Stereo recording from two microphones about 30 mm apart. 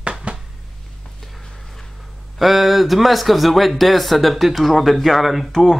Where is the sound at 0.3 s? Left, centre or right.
Right.